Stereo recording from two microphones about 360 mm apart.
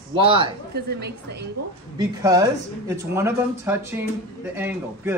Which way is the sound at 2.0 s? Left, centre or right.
Centre.